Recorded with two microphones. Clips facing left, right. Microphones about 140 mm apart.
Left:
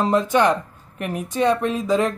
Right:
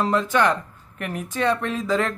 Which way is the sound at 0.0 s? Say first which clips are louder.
Left 3 dB; 20° left (ahead or behind).